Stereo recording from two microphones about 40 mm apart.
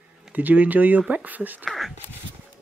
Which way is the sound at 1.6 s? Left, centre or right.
Centre.